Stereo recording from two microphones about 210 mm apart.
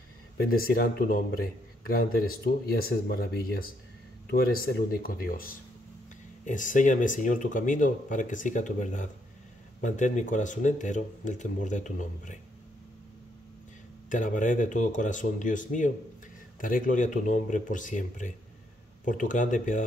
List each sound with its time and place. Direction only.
0.5 s speech: 45° left (ahead or behind)
14.0 s speech: 35° left (ahead or behind)